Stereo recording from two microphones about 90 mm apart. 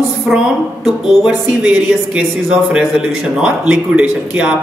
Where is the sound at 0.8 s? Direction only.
5° right (ahead or behind).